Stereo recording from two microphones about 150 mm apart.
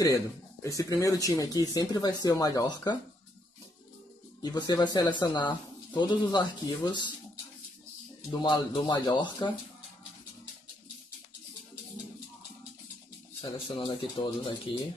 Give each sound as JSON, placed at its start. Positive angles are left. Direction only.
{"t": 0.7, "sound": "speech", "side_deg": 20}
{"t": 4.4, "sound": "speech", "side_deg": 25}
{"t": 8.3, "sound": "speech", "side_deg": 30}
{"t": 13.4, "sound": "speech", "side_deg": 30}